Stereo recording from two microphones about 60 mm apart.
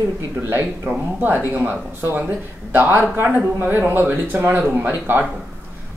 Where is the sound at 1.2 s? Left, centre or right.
Right.